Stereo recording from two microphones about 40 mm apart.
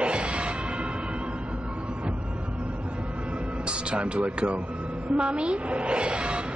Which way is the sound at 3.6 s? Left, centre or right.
Right.